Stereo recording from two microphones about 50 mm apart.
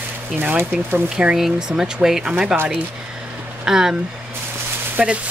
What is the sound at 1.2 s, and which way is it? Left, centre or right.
Speech, right.